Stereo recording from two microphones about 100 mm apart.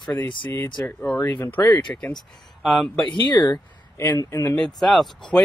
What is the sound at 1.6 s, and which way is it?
Speech, 40° left (ahead or behind).